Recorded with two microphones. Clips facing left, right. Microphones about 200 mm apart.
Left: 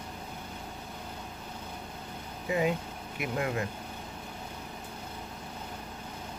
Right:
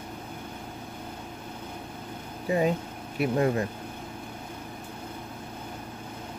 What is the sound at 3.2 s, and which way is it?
Speech, 35° right (ahead or behind).